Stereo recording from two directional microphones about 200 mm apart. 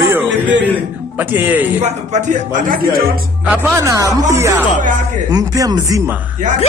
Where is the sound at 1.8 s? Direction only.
35° right (ahead or behind).